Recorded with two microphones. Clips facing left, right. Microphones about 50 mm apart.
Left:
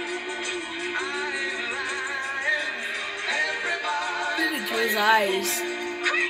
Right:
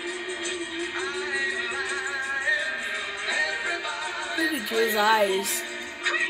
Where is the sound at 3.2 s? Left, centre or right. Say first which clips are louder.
Left 1 dB; left.